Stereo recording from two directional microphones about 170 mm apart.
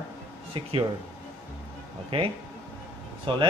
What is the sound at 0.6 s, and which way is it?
Speech, 35° right (ahead or behind).